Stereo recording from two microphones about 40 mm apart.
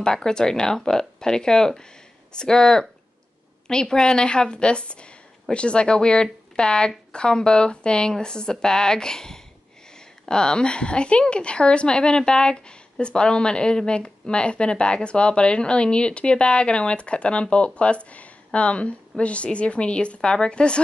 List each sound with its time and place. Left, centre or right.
0.0 s a woman's voice: centre